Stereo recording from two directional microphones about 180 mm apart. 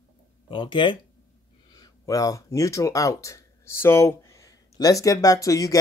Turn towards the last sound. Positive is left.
turn(degrees=20)  # may be behind; listen again after turning